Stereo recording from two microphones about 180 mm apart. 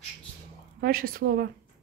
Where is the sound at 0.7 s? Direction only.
55° right (ahead or behind).